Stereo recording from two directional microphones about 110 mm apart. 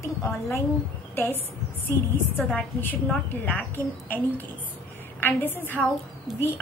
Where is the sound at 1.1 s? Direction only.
20° left (ahead or behind).